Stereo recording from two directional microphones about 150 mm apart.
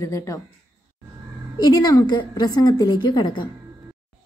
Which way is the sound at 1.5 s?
25° left (ahead or behind).